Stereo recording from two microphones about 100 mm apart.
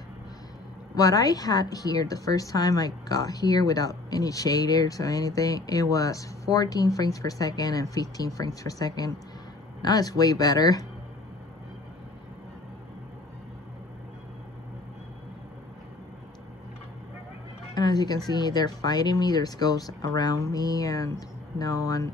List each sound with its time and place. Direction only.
0.9 s a woman's voice: 40° left (ahead or behind)
17.7 s a woman's voice: 45° left (ahead or behind)